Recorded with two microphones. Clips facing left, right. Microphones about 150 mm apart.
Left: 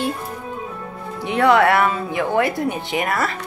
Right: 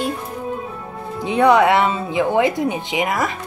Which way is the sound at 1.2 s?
20° right (ahead or behind).